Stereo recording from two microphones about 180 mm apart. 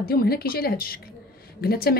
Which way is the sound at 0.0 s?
60° left (ahead or behind).